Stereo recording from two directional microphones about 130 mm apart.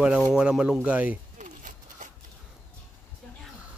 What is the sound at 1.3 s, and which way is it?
Keys jangling, 80° right.